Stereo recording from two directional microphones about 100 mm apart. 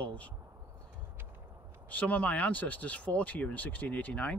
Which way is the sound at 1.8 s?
15° left (ahead or behind).